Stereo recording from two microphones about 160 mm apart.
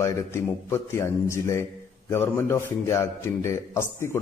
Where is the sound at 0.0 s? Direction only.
15° left (ahead or behind).